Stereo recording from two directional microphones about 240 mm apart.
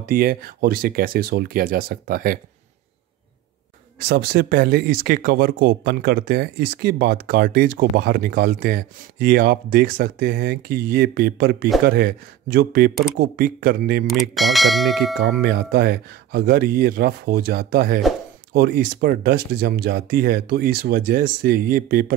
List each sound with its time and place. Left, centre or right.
0.0 s speech: right
4.1 s speech: right
14.1 s speech: centre
15.4 s speech: right